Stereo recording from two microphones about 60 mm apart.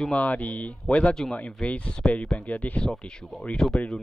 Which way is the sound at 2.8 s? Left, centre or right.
Centre.